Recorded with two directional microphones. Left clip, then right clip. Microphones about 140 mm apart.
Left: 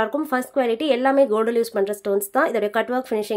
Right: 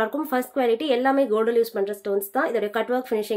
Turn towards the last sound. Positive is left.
turn(degrees=30)  # may be behind; listen again after turning